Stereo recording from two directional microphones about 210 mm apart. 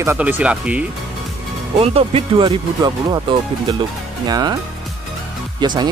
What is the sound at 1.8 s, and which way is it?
Speech, 25° right (ahead or behind).